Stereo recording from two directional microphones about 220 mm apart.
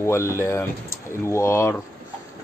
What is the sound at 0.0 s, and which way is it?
Speech, 10° left (ahead or behind).